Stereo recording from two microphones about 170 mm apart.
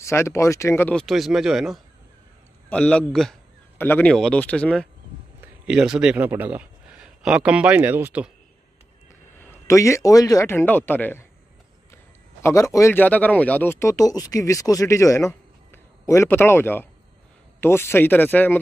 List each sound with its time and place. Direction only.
0.0 s a man's voice: 15° left (ahead or behind); by 8.3 s 10° right (ahead or behind)
9.4 s a man's voice: 15° left (ahead or behind)